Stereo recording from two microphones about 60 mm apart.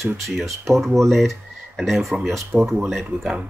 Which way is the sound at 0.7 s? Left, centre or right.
Centre.